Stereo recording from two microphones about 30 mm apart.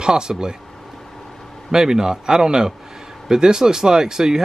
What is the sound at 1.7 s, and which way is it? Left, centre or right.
Speech, right.